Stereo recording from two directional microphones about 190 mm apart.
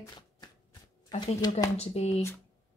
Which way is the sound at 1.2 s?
25° left (ahead or behind).